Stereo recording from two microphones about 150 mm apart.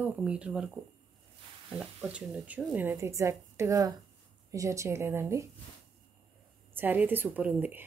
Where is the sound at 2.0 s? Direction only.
10° right (ahead or behind).